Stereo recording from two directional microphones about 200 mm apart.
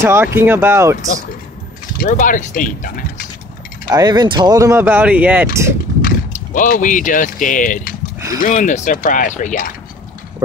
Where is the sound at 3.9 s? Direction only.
15° right (ahead or behind).